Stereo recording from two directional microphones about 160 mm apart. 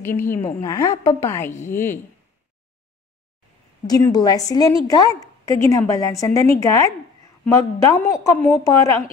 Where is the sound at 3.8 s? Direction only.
25° left (ahead or behind).